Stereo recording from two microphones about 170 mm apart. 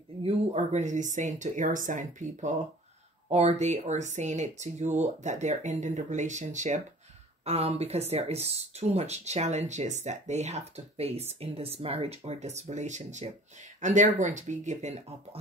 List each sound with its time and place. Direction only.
0.2 s speech: 40° right (ahead or behind)